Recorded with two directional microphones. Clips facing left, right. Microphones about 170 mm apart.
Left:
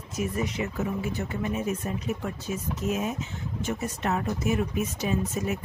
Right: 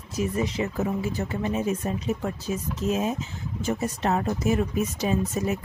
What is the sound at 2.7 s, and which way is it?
A woman's voice, 30° right (ahead or behind).